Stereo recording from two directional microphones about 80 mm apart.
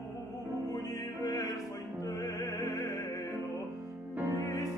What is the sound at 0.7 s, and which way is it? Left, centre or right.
Music, left.